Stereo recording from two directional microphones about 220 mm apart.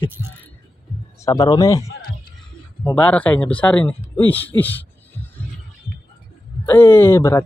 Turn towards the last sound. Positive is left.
turn(degrees=10)  # may be behind; listen again after turning